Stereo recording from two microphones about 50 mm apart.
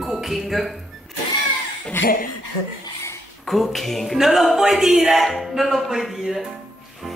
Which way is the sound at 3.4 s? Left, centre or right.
Centre.